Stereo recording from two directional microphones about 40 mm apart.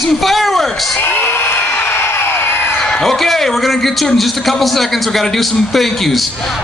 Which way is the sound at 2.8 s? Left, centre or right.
Left.